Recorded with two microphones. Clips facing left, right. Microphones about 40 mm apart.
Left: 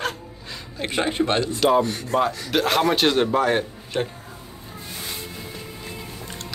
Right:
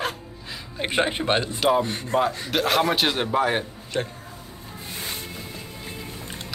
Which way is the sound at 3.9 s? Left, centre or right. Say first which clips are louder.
Left 2 dB; centre.